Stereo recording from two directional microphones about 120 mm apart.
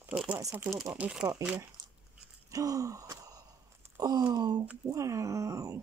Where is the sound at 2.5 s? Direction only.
30° right (ahead or behind).